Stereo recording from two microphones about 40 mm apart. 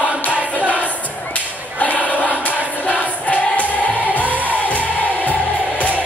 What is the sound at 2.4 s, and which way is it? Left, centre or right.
Music, left.